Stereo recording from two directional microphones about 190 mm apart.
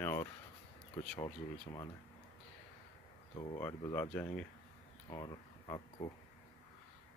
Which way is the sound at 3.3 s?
25° left (ahead or behind).